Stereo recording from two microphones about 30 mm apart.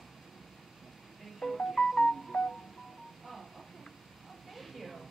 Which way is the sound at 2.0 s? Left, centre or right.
Left.